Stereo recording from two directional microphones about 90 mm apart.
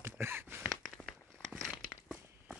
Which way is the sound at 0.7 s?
Centre (ahead or behind).